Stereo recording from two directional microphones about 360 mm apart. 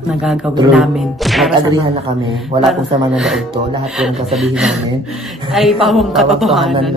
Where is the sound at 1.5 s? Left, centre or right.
Centre.